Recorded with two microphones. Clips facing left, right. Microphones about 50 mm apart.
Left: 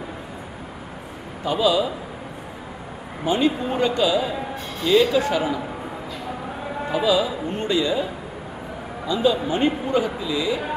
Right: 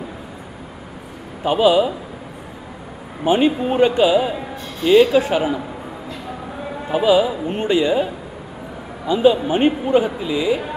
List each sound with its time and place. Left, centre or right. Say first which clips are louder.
1.4 s a man's voice: right 5 dB; right
3.3 s speech: right 5 dB; right
6.9 s speech: right 5 dB; right